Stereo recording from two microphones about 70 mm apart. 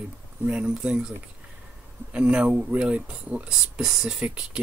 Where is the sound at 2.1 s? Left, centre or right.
Centre.